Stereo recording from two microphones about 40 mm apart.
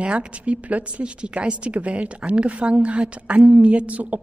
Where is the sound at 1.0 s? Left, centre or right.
Right.